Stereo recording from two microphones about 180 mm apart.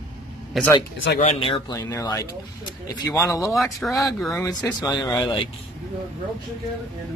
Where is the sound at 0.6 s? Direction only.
Centre (ahead or behind).